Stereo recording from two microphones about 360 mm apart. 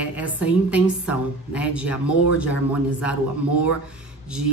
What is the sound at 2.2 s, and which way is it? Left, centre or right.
Speech, left.